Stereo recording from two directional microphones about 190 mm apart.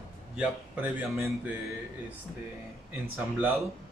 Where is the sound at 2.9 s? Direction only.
10° right (ahead or behind).